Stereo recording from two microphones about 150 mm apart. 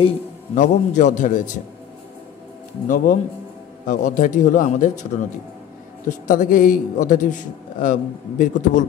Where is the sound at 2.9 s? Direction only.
65° left (ahead or behind).